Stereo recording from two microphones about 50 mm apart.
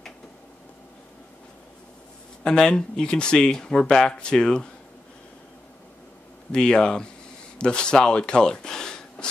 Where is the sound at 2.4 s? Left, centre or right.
Centre.